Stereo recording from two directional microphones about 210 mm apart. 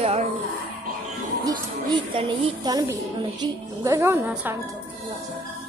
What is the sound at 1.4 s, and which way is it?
A woman's voice, 20° right (ahead or behind).